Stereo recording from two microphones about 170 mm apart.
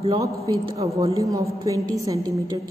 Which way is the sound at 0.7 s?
20° right (ahead or behind).